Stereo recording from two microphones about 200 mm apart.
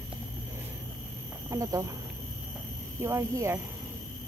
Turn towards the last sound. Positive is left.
turn(degrees=-15)  # may be behind; listen again after turning